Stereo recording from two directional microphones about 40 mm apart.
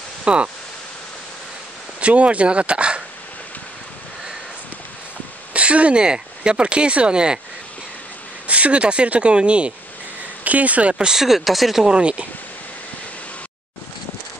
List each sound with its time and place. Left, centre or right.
0.2 s speech: right
2.0 s speech: right
5.5 s a sound: right
6.0 s speech: right
8.5 s speech: right
10.4 s speech: right
11.1 s speech: centre
11.8 s speech: right